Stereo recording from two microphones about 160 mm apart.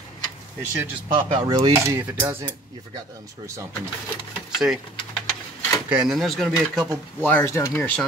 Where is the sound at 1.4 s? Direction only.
20° right (ahead or behind).